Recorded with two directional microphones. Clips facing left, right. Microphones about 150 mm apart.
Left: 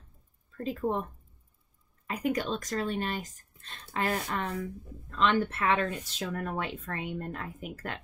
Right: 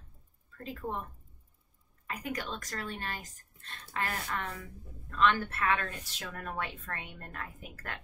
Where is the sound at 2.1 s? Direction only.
20° left (ahead or behind).